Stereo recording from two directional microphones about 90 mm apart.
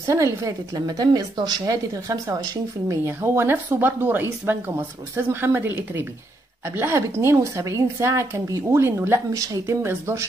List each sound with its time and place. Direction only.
0.0 s a woman's voice: 35° right (ahead or behind)
9.3 s a woman's voice: 40° right (ahead or behind)
9.8 s speech: 30° right (ahead or behind)